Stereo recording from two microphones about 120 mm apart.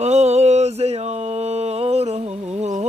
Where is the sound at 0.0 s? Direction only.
70° right (ahead or behind).